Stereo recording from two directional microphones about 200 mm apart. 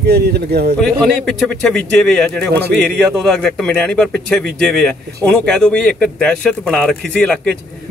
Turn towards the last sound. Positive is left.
turn(degrees=5)  # may be behind; listen again after turning